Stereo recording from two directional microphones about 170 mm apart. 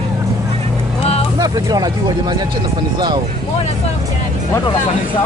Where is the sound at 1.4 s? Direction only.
20° right (ahead or behind).